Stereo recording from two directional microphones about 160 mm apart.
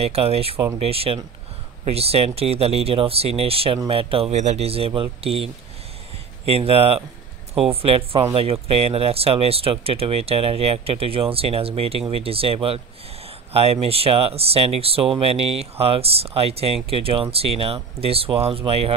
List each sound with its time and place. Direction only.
0.0 s speech: 40° right (ahead or behind)